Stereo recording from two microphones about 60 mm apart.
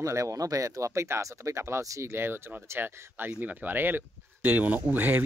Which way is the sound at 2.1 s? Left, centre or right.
Right.